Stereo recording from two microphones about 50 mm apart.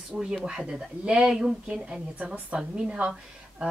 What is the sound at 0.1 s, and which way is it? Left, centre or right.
A woman's voice, centre.